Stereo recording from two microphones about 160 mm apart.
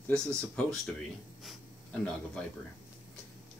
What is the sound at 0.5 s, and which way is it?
Speech, centre (ahead or behind).